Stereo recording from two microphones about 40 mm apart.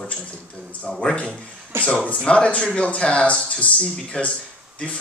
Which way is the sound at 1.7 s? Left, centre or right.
Right.